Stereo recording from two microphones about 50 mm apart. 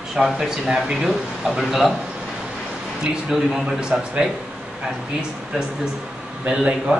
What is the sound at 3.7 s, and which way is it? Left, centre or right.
Speech, centre.